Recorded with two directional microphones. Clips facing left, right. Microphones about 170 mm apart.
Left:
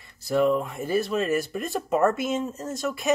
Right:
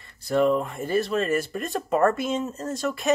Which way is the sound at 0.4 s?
5° left (ahead or behind).